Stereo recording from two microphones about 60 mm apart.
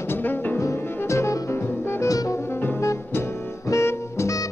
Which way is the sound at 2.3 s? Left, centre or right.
Left.